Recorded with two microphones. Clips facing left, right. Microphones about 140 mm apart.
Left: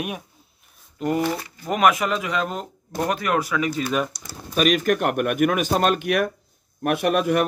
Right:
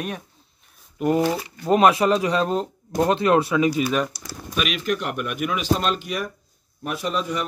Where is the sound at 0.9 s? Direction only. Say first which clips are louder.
Right 3 dB; 20° right (ahead or behind).